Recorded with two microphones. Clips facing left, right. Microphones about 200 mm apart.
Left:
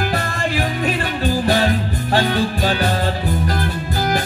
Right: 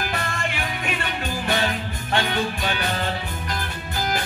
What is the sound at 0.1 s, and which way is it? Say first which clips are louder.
Music: left 6 dB; 35° left (ahead or behind).